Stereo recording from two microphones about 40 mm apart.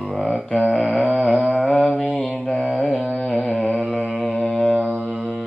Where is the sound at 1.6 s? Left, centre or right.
Left.